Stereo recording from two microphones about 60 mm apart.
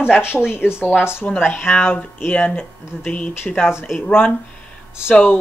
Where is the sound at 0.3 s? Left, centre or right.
Centre.